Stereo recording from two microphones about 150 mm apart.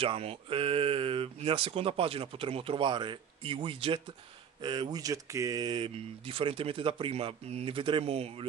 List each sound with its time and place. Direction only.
0.0 s speech: 40° right (ahead or behind)